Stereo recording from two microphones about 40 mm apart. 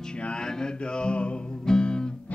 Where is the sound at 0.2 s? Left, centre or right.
Left.